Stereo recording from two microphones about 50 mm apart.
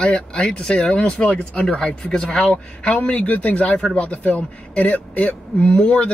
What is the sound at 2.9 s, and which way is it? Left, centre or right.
Speech, left.